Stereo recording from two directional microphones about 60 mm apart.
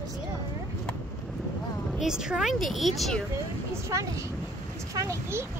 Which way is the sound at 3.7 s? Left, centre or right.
Right.